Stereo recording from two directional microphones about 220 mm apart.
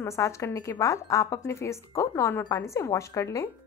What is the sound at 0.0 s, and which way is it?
A woman's voice, 15° left (ahead or behind).